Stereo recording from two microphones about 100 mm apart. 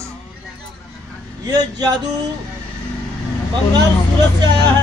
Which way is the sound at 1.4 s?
40° right (ahead or behind).